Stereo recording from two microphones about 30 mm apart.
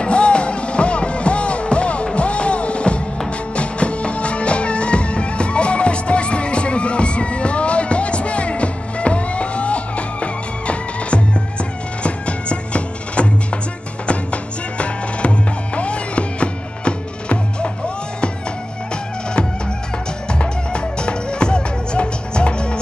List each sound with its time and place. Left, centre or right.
0.0 s music: left
20.2 s music: left